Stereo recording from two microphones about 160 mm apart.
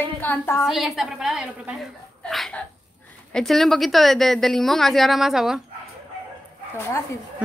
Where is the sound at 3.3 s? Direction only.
Centre (ahead or behind).